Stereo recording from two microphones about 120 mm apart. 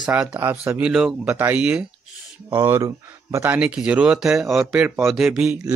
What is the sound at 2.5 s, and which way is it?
Speech, 20° right (ahead or behind).